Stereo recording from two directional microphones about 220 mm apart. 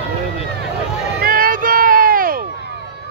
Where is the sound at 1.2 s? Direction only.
40° right (ahead or behind).